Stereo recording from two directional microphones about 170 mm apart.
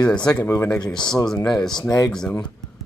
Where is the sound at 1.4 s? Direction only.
5° left (ahead or behind).